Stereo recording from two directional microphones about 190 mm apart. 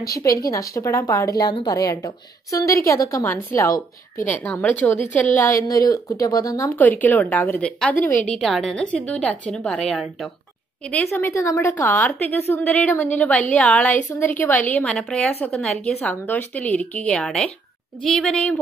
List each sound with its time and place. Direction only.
0.2 s a woman's voice: 15° left (ahead or behind)